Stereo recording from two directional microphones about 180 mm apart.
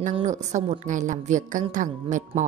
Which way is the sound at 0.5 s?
40° right (ahead or behind).